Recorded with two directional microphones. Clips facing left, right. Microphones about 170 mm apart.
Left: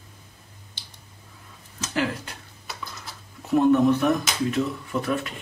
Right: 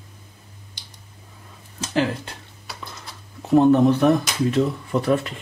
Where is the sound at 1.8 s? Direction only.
30° right (ahead or behind).